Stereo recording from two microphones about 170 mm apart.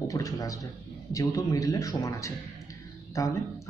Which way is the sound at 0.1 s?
20° left (ahead or behind).